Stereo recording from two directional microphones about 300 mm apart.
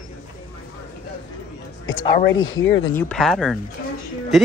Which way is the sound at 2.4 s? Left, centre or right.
Left.